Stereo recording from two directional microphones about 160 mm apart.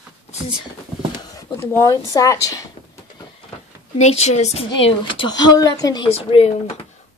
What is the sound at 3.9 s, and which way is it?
Speech, 45° left (ahead or behind).